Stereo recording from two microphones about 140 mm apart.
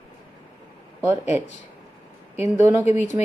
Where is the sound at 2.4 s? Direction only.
20° right (ahead or behind).